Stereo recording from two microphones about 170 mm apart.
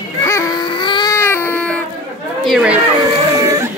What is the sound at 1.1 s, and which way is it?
Baby cry, 15° left (ahead or behind).